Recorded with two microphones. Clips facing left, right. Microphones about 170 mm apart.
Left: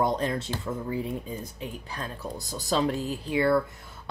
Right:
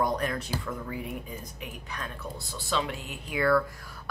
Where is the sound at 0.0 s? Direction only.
25° left (ahead or behind).